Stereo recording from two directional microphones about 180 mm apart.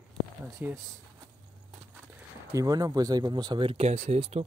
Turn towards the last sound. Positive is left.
turn(degrees=-35)  # may be behind; listen again after turning